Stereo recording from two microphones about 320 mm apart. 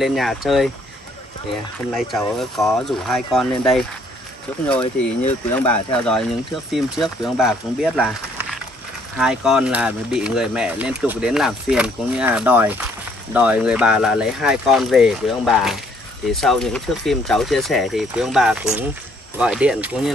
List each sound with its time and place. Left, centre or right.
0.0 s speech: centre
2.0 s speech: centre
4.8 s speech: centre
5.6 s speech: centre